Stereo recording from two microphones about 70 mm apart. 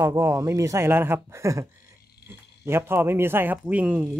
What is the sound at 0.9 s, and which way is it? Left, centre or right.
Speech, right.